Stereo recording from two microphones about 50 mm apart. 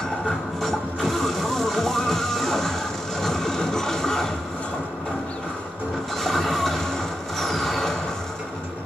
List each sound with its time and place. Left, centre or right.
0.6 s music: centre
6.2 s music: centre
7.3 s vehicle: centre